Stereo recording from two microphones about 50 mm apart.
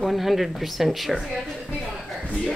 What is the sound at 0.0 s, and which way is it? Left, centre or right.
A woman's voice, centre.